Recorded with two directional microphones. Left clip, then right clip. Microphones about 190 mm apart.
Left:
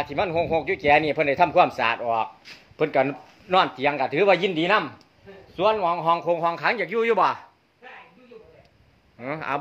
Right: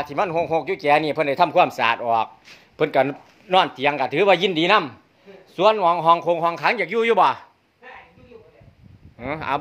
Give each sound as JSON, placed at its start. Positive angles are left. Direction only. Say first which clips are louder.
{"t": 0.0, "sound": "a man's voice", "louder": "right 2 dB", "side_deg": -10}
{"t": 2.0, "sound": "a man's voice", "louder": "right 4 dB", "side_deg": -25}
{"t": 9.2, "sound": "a man's voice", "louder": "right 3 dB", "side_deg": -15}